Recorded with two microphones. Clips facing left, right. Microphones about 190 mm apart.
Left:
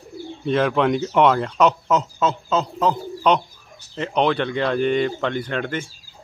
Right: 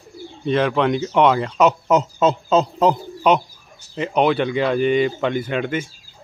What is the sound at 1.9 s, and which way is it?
Speech, 20° right (ahead or behind).